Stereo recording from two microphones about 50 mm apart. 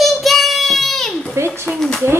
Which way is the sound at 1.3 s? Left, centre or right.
Right.